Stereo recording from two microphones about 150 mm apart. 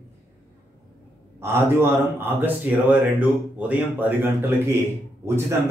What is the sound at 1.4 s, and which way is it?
Speech, 15° right (ahead or behind).